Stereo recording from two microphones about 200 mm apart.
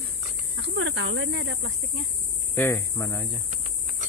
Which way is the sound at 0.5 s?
70° right (ahead or behind).